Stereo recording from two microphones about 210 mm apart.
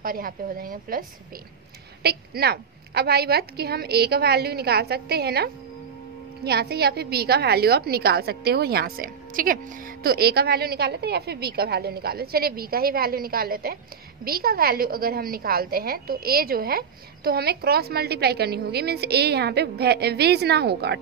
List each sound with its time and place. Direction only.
0.0 s a woman's voice: 45° right (ahead or behind)